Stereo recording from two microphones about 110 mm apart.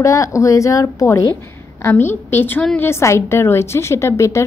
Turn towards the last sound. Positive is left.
turn(degrees=25)  # may be behind; listen again after turning